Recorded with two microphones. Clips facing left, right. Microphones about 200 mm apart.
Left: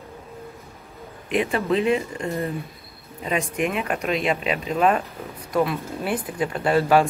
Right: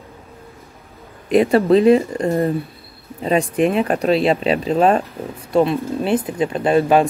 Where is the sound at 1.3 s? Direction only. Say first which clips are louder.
Right 9 dB; 35° right (ahead or behind).